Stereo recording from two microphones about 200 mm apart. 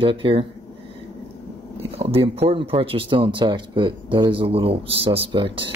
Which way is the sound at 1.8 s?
30° right (ahead or behind).